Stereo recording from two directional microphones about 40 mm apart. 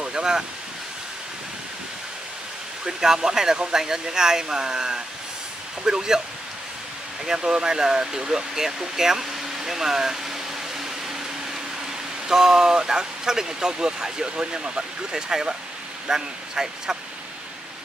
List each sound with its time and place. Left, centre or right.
0.0 s a sound: centre
2.8 s speech: centre
7.2 s speech: centre
12.3 s speech: centre